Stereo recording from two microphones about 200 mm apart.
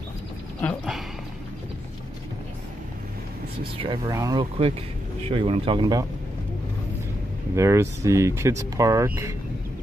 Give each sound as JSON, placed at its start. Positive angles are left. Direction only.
{"t": 0.6, "sound": "dog", "side_deg": 0}
{"t": 3.7, "sound": "speech", "side_deg": -30}
{"t": 4.1, "sound": "speech", "side_deg": -15}
{"t": 7.5, "sound": "speech", "side_deg": -15}